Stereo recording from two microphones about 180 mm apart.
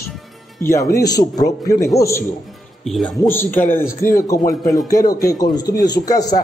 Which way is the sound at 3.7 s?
15° left (ahead or behind).